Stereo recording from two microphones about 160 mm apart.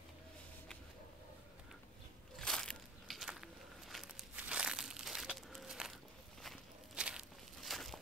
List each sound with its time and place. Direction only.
2.3 s a sound: 5° left (ahead or behind)
3.9 s crumpling: centre (ahead or behind)
6.4 s walk: centre (ahead or behind)